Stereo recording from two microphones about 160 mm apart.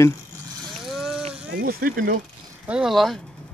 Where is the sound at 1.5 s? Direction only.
70° right (ahead or behind).